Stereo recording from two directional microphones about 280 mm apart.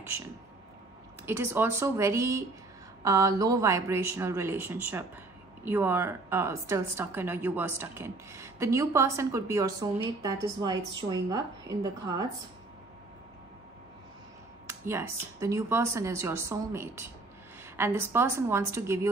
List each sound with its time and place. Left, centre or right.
1.2 s a woman's voice: centre
14.7 s a woman's voice: centre